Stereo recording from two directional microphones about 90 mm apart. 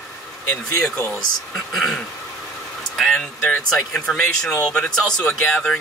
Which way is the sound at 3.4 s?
20° left (ahead or behind).